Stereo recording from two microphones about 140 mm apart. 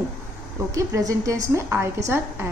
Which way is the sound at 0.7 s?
25° right (ahead or behind).